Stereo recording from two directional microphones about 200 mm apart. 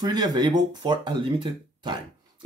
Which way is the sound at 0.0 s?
20° right (ahead or behind).